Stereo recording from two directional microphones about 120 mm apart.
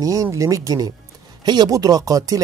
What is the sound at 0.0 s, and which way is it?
Speech, 30° right (ahead or behind).